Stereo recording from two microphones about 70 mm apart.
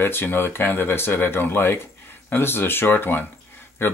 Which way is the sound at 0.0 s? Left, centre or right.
Left.